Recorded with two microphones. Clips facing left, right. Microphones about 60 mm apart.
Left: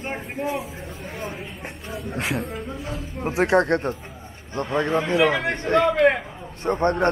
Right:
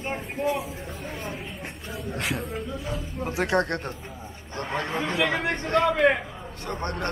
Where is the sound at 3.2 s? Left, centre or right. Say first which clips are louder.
Left 5 dB; left.